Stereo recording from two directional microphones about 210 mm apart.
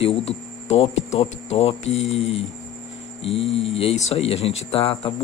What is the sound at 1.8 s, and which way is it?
Mantra, 65° left (ahead or behind).